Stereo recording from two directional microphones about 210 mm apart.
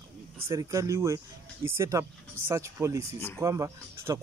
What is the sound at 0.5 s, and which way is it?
Speech, 15° right (ahead or behind).